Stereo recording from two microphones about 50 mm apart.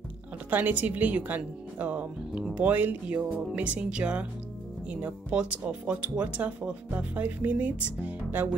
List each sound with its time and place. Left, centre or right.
0.5 s speech: right